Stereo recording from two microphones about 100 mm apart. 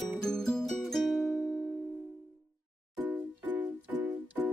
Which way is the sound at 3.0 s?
15° right (ahead or behind).